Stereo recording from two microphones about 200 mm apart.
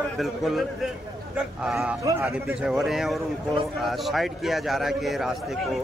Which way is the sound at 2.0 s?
15° right (ahead or behind).